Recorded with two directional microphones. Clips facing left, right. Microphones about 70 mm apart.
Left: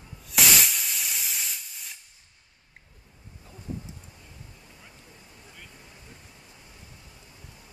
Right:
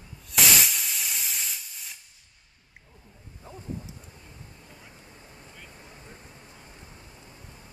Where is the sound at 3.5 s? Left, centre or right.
Right.